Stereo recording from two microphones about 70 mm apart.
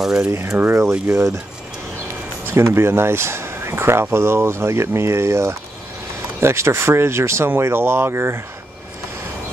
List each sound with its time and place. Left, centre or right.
0.2 s speech: right
2.4 s speech: right